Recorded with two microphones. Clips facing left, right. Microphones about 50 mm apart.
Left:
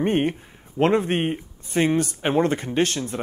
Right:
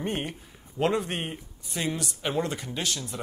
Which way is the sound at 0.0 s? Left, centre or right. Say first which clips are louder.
Left 10 dB; left.